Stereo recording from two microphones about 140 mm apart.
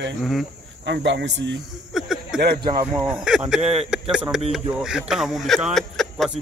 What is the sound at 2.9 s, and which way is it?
A man's voice, 5° right (ahead or behind).